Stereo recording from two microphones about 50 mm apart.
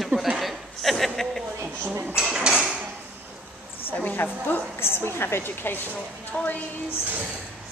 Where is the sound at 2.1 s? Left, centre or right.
Centre.